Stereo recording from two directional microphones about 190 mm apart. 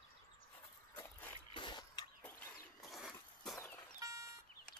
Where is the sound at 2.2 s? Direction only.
10° left (ahead or behind).